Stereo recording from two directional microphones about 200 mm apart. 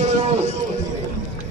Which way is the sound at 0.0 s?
35° right (ahead or behind).